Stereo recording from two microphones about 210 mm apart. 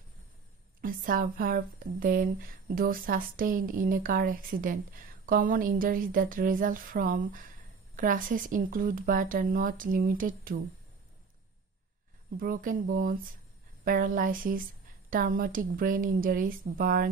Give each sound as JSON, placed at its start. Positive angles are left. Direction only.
{"t": 0.7, "sound": "a woman's voice", "side_deg": -40}
{"t": 12.4, "sound": "a woman's voice", "side_deg": -40}